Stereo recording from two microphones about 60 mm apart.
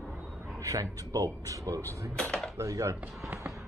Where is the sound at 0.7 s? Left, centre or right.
Right.